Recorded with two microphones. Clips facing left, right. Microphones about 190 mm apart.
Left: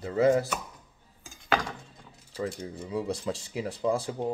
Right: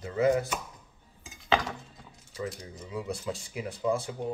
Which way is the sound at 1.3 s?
Centre (ahead or behind).